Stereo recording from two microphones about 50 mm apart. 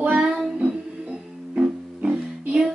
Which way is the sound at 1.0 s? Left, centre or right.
Right.